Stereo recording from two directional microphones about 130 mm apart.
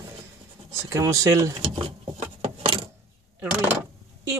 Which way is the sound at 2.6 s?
40° right (ahead or behind).